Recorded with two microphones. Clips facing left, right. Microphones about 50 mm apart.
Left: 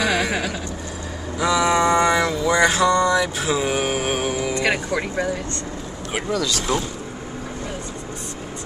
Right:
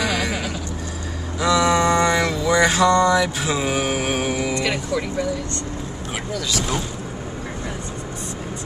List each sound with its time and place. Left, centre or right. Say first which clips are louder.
0.0 s a sound: left 2 dB; left
1.4 s mantra: right 1 dB; centre
4.6 s vehicle: left 1 dB; left